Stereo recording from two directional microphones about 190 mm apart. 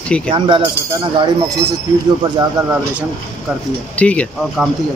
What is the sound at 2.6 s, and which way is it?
Speech, 15° right (ahead or behind).